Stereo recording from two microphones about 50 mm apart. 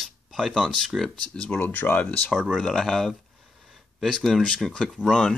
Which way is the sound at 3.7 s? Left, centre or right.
Centre.